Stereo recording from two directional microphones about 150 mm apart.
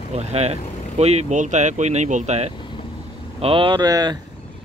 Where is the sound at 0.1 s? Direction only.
45° right (ahead or behind).